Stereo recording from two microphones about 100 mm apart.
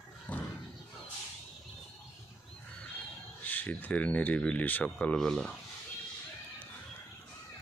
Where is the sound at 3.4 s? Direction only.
15° left (ahead or behind).